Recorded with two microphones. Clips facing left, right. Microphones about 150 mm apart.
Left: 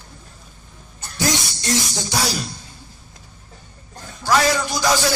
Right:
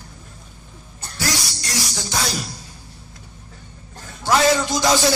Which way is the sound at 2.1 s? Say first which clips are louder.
Left 1 dB; centre (ahead or behind).